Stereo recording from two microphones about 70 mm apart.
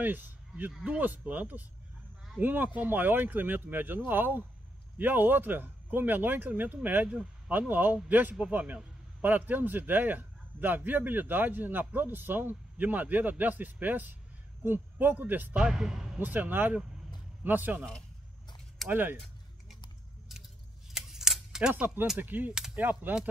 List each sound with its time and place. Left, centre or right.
0.0 s a man's voice: right
7.1 s speech: centre
7.5 s a man's voice: right
15.5 s speech: centre
16.2 s a man's voice: right
18.9 s a man's voice: right
20.9 s keys jangling: centre
21.7 s a man's voice: right